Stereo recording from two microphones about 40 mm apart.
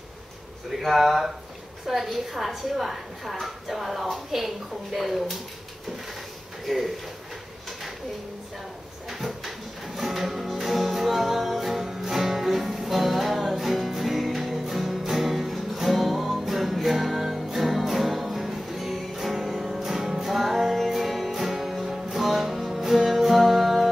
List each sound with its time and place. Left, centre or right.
0.8 s a woman's voice: centre
6.6 s speech: centre
9.9 s music: centre